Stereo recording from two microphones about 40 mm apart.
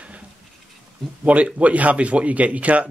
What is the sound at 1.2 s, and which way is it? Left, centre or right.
Speech, right.